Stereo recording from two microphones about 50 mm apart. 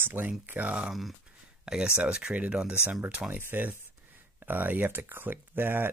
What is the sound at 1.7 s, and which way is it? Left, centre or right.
Speech, centre.